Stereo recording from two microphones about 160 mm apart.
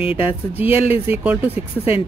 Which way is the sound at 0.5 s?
10° right (ahead or behind).